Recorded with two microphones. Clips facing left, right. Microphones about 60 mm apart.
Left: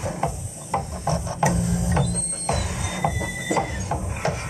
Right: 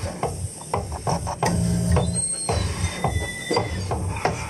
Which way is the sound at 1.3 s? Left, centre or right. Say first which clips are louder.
Left 1 dB; centre.